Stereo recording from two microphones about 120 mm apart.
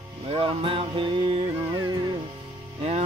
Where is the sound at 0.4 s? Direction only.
45° right (ahead or behind).